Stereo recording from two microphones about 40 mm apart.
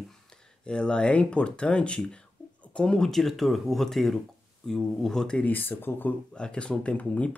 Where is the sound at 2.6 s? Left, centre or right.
Left.